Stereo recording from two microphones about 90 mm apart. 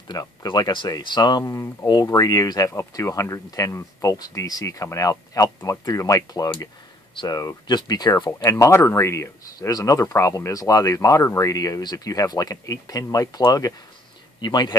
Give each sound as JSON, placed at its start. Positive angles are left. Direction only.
{"t": 0.1, "sound": "speech", "side_deg": 45}
{"t": 1.4, "sound": "speech", "side_deg": 30}
{"t": 1.9, "sound": "speech", "side_deg": 45}
{"t": 2.7, "sound": "speech", "side_deg": 35}
{"t": 8.5, "sound": "speech", "side_deg": 30}